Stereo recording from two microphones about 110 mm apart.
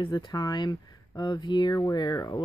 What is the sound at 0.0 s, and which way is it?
Speech, 45° left (ahead or behind).